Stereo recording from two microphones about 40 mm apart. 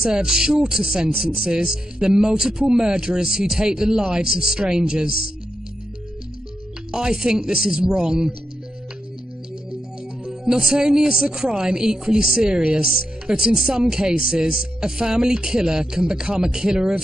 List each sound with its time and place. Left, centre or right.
0.1 s speech: centre
6.9 s speech: centre
10.4 s speech: centre